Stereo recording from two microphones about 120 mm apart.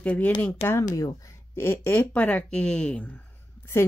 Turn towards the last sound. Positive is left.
turn(degrees=15)  # may be behind; listen again after turning